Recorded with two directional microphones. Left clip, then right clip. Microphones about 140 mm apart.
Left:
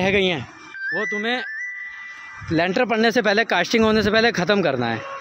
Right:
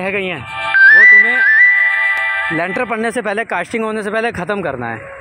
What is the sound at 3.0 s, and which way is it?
Speech, 40° left (ahead or behind).